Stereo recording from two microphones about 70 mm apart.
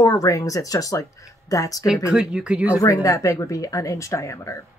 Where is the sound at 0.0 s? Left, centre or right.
Left.